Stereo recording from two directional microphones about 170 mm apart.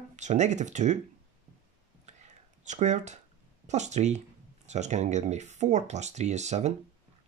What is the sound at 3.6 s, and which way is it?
Speech, 45° right (ahead or behind).